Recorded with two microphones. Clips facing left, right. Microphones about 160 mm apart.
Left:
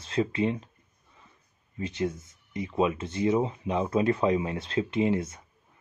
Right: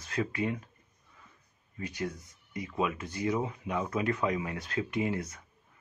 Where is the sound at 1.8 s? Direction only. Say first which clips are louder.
Left 6 dB; 25° left (ahead or behind).